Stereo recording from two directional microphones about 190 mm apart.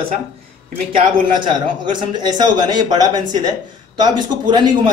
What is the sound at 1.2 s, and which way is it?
A man's voice, 25° right (ahead or behind).